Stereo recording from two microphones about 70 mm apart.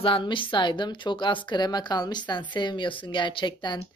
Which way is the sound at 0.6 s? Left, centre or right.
Left.